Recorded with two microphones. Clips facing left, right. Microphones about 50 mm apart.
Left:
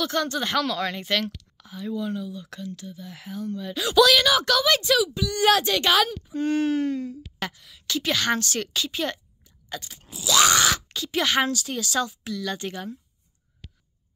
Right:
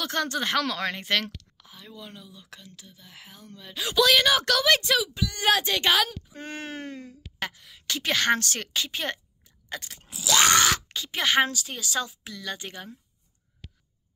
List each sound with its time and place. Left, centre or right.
0.0 s speech: right
1.6 s speech: centre
3.8 s speech: right
5.0 s speech: right
9.7 s scrape: right
10.3 s speech: right
10.9 s speech: right; by 12.9 s centre